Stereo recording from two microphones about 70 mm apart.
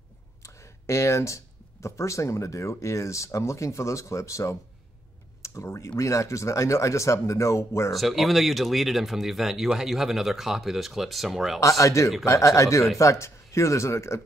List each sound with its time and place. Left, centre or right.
0.4 s speech: left
5.4 s computer keyboard: left
5.9 s speech: left
7.9 s speech: centre
11.6 s speech: left